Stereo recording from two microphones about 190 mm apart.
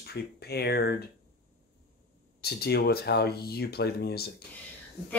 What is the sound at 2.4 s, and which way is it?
Speech, 55° left (ahead or behind).